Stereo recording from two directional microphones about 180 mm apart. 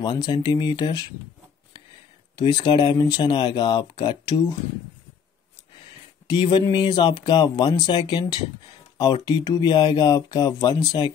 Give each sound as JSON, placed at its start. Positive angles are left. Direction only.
{"t": 0.0, "sound": "speech", "side_deg": 25}
{"t": 2.3, "sound": "speech", "side_deg": 25}
{"t": 6.3, "sound": "speech", "side_deg": 25}